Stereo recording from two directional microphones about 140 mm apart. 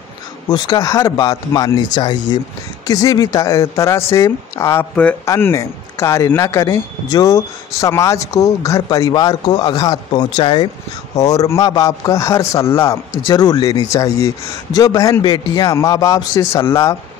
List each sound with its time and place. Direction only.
0.5 s a man's voice: 30° left (ahead or behind)
11.1 s a man's voice: 25° left (ahead or behind)